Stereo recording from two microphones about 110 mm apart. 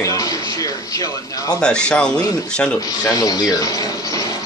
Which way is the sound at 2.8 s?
35° left (ahead or behind).